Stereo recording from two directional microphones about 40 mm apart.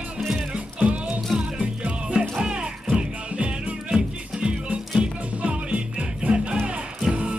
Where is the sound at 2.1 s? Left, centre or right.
Right.